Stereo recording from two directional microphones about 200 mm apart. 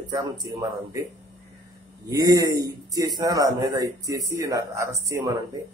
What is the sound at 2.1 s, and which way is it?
Speech, 20° right (ahead or behind).